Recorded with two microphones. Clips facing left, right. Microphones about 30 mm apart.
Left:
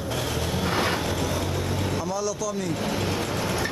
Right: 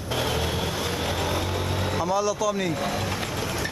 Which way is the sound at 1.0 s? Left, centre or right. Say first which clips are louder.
Even; centre.